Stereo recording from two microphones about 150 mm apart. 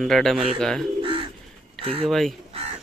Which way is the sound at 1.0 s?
35° right (ahead or behind).